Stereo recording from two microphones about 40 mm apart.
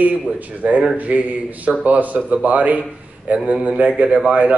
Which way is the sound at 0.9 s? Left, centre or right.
Right.